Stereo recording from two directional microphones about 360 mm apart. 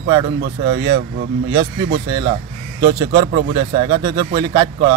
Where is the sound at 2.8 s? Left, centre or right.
Centre.